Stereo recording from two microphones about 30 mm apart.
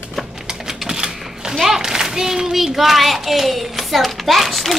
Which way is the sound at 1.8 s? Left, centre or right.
Centre.